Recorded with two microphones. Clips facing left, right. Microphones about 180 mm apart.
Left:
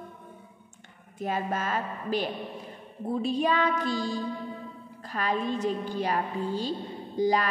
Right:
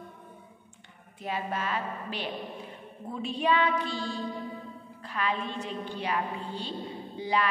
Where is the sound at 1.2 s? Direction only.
45° left (ahead or behind).